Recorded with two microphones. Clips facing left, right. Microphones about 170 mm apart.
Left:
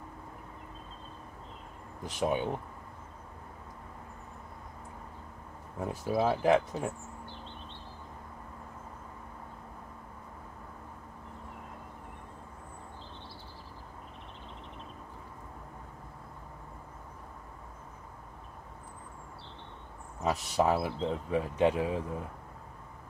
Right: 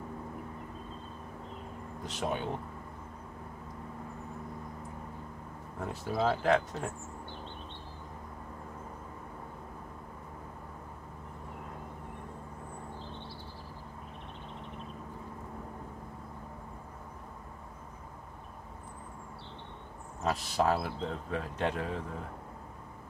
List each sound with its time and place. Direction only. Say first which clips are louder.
2.0 s speech: left 4 dB; 10° left (ahead or behind)
5.8 s speech: left 3 dB; 10° left (ahead or behind)
20.2 s speech: left 1 dB; 10° left (ahead or behind)